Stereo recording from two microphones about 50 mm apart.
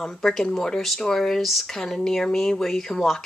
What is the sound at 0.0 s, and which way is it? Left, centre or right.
Speech, centre.